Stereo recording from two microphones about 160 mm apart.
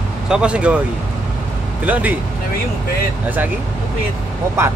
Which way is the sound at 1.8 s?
10° right (ahead or behind).